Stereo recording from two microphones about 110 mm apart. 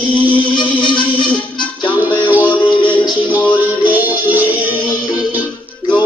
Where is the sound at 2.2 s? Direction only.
15° right (ahead or behind).